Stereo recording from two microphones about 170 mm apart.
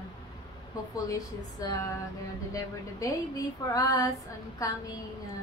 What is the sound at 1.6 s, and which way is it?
Speech, 20° left (ahead or behind).